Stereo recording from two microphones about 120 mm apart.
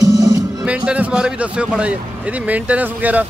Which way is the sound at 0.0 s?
30° right (ahead or behind).